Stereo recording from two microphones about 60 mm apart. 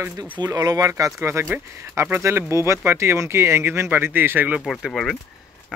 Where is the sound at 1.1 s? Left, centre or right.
Right.